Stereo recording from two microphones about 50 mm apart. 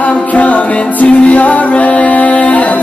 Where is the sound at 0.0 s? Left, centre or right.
Left.